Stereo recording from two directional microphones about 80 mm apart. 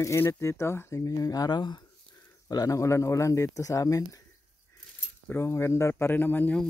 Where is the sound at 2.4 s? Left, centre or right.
Left.